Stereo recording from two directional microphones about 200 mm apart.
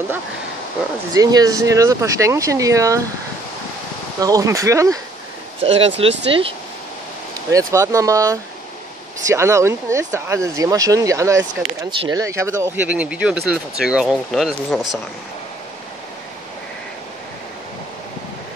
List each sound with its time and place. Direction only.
1.1 s speech: 20° right (ahead or behind)
4.2 s speech: 15° right (ahead or behind)
5.6 s speech: 30° right (ahead or behind)
7.5 s speech: 15° right (ahead or behind)